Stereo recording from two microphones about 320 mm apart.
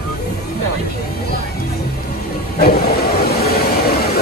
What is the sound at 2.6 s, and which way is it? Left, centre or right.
Vehicle, left.